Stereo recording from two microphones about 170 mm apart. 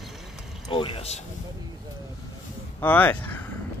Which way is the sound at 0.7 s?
30° left (ahead or behind).